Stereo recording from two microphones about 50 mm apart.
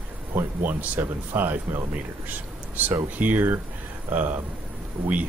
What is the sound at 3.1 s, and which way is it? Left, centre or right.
Speech, right.